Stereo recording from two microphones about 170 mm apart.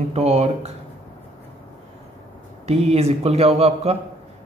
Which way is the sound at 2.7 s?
35° right (ahead or behind).